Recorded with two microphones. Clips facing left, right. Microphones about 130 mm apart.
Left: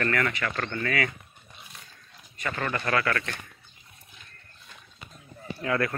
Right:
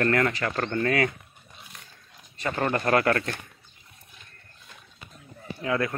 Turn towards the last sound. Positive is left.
turn(degrees=-20)  # may be behind; listen again after turning